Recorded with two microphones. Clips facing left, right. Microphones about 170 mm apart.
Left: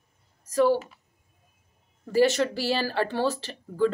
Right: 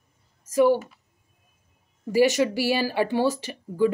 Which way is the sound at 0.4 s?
15° right (ahead or behind).